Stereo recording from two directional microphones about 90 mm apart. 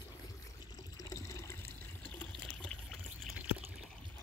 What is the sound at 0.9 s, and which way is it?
Water, 35° left (ahead or behind).